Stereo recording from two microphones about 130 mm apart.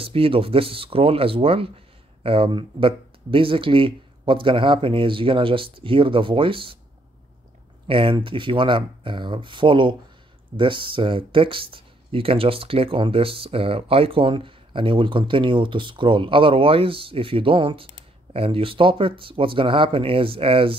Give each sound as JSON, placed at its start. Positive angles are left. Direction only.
{"t": 0.0, "sound": "speech", "side_deg": -45}
{"t": 7.9, "sound": "speech", "side_deg": -45}